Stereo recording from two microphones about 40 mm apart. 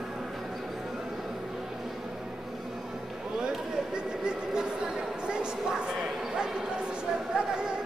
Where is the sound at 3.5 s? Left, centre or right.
Centre.